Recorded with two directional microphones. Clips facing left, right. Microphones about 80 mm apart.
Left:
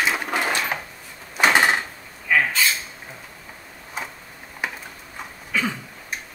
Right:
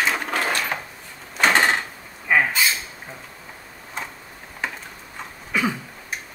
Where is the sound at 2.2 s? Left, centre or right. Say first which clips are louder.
Right 1 dB; centre.